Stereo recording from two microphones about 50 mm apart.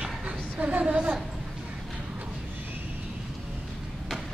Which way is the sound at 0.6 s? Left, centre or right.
Right.